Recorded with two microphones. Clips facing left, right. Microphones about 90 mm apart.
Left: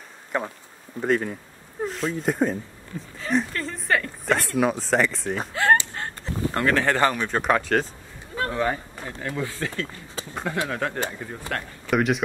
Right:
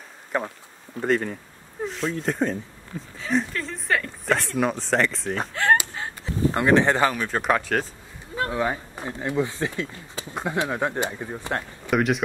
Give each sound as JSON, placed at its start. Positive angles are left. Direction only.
{"t": 0.3, "sound": "speech", "side_deg": 0}
{"t": 5.9, "sound": "a sound", "side_deg": 0}
{"t": 6.5, "sound": "speech", "side_deg": -20}
{"t": 7.0, "sound": "speech", "side_deg": 0}
{"t": 11.9, "sound": "speech", "side_deg": 0}